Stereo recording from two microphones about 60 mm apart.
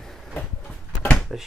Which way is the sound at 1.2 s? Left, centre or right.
Centre.